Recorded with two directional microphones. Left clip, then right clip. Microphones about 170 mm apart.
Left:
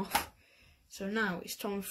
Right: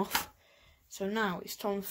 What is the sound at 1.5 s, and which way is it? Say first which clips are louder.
Speech: right 4 dB; 25° right (ahead or behind).